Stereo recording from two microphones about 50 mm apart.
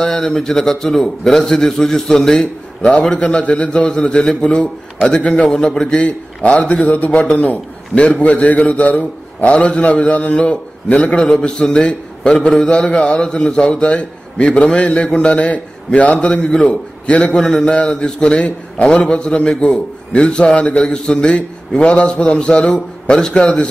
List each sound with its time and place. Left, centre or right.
0.0 s a man's voice: centre
5.9 s a man's voice: left